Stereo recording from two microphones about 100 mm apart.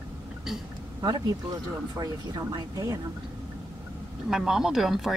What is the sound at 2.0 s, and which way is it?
Speech, 40° right (ahead or behind).